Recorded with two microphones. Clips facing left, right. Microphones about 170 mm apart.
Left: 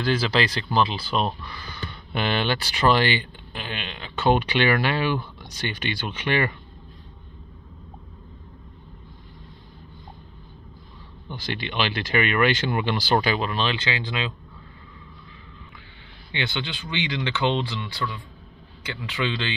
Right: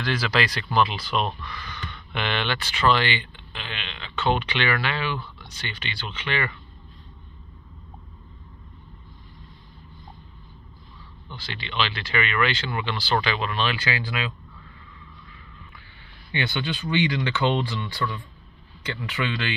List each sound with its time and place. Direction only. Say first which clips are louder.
0.0 s speech: left 2 dB; 30° left (ahead or behind); by 6.5 s 45° left (ahead or behind)
11.3 s speech: left 2 dB; 45° left (ahead or behind); by 14.3 s 25° left (ahead or behind)
16.5 s speech: right 5 dB; 15° left (ahead or behind)